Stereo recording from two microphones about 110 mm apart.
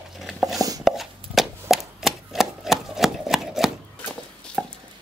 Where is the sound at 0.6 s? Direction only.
35° right (ahead or behind).